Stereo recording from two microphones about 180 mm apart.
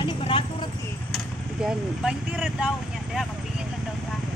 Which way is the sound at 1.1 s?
5° right (ahead or behind).